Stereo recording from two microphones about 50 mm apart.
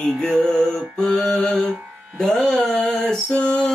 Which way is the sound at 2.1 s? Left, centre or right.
Centre.